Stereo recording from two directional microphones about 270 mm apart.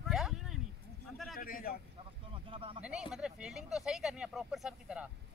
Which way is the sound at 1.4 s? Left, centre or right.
Left.